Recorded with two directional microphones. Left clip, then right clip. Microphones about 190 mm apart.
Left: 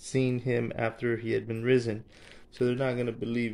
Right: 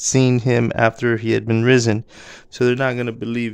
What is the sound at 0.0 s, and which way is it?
Speech, 65° right (ahead or behind).